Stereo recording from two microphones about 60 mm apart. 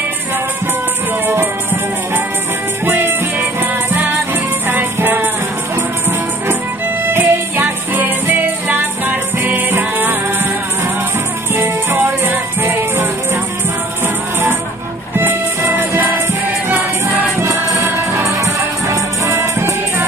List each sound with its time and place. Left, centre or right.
1.2 s music: right
2.8 s music: right
4.6 s music: right
7.1 s music: right
11.5 s music: right
17.8 s music: right